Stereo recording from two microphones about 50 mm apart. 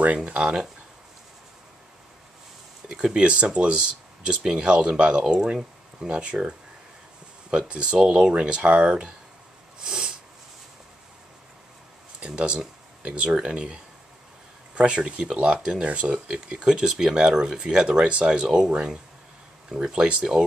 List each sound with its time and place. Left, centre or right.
0.0 s speech: right
2.9 s speech: centre
7.5 s speech: centre
9.8 s snort: centre
12.2 s speech: centre
14.8 s speech: right